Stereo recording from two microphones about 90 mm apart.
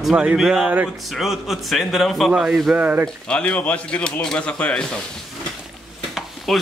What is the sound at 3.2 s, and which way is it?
Speech, 10° left (ahead or behind).